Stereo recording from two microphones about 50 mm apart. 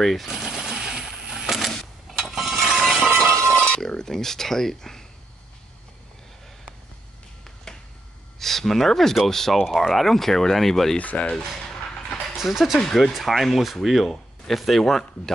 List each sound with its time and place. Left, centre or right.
0.0 s speech: centre
0.5 s sewing machine: centre
1.3 s printer: centre
1.8 s mechanisms: centre
2.3 s a sound: centre
3.4 s speech: centre
8.4 s speech: centre
11.0 s speech: left
12.4 s speech: centre
12.7 s a man's voice: centre